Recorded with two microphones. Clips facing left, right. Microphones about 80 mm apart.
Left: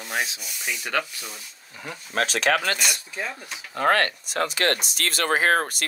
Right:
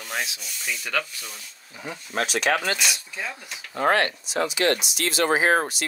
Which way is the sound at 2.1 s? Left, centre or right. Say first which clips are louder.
Left 1 dB; left.